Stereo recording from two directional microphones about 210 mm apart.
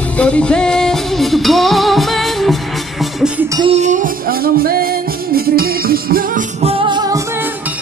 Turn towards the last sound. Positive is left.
turn(degrees=-20)  # may be behind; listen again after turning